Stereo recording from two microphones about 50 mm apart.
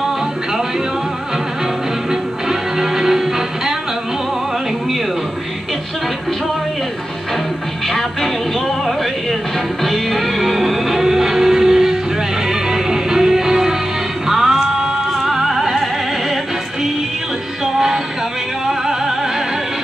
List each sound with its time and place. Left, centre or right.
2.0 s music: centre
7.9 s music: centre
17.7 s music: centre